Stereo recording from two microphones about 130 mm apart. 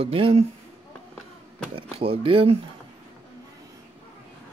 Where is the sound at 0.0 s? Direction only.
45° right (ahead or behind).